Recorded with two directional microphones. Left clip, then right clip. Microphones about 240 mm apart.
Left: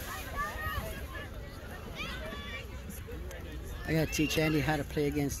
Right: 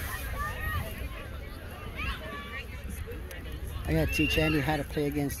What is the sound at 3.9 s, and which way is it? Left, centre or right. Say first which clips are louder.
Speech: right 3 dB; centre.